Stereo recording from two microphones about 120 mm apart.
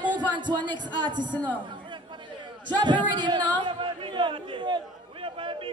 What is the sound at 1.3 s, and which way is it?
Speech, 15° left (ahead or behind).